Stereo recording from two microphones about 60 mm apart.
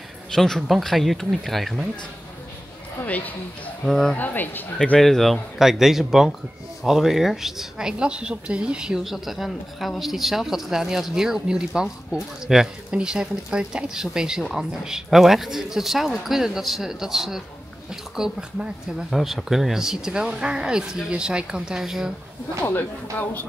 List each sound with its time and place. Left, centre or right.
0.3 s speech: centre
3.0 s speech: left
3.8 s speech: centre
4.2 s speech: left
4.9 s speech: centre
19.0 s speech: centre
22.6 s speech: left